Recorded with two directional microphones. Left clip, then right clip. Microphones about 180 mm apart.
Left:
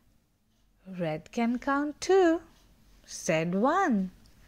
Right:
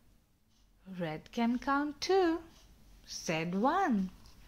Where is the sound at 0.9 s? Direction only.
25° left (ahead or behind).